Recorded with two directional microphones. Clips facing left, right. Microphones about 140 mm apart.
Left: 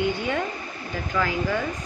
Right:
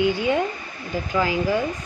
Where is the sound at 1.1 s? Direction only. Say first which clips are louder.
Right 3 dB; 15° right (ahead or behind).